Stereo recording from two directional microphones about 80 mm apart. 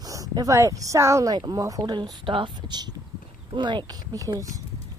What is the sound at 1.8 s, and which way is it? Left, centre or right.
A woman's voice, right.